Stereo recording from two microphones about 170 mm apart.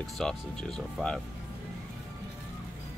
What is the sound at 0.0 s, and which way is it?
Speech, centre (ahead or behind).